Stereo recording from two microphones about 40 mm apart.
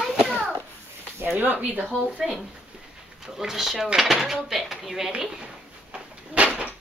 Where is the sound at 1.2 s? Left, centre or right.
Right.